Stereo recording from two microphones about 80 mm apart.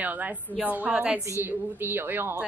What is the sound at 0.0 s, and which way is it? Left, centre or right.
A woman's voice, centre.